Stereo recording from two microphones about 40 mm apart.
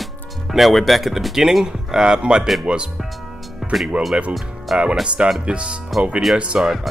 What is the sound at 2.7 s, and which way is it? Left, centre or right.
Speech, right.